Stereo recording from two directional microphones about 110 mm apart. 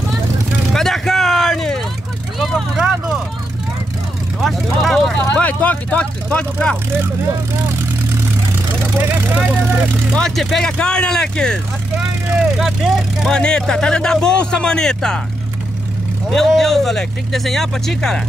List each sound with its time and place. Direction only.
0.7 s vehicle: 5° left (ahead or behind)
4.4 s speech: centre (ahead or behind)
10.1 s speech: 5° left (ahead or behind)
16.3 s speech: 5° left (ahead or behind)